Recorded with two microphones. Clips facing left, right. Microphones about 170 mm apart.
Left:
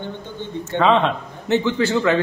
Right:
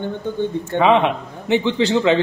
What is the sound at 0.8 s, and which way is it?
A man's voice, 15° right (ahead or behind).